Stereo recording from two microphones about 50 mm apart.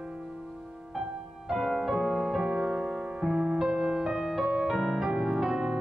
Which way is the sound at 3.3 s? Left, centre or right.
Right.